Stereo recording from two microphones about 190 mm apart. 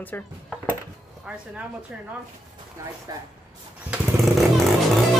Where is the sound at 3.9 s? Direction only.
5° right (ahead or behind).